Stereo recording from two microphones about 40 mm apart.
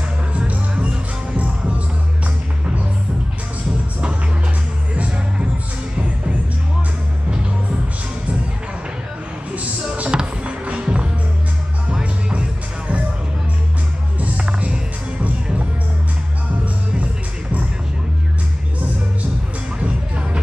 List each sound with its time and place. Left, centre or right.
0.3 s music: right
4.9 s music: right
9.6 s a sound: right
10.1 s music: right
14.2 s music: right
16.6 s music: right
19.8 s music: right